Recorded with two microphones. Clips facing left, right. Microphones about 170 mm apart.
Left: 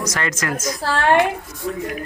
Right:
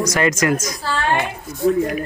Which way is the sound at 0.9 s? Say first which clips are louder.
Left 4 dB; 70° left (ahead or behind).